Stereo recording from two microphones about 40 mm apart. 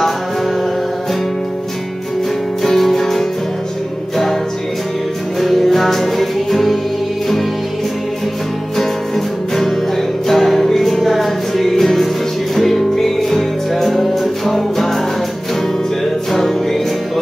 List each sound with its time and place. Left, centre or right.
2.6 s music: centre
5.4 s music: centre
10.2 s music: centre
16.3 s music: centre